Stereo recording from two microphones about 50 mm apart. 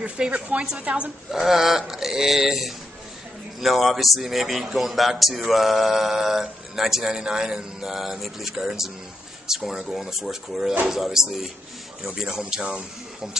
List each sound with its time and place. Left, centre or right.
0.0 s a woman's voice: right
1.3 s a man's voice: centre